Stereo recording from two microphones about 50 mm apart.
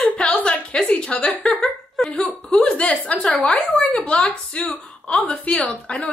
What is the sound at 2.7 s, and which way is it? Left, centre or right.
A woman's voice, left.